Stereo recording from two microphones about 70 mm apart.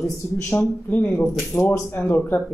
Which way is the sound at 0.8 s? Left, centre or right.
Left.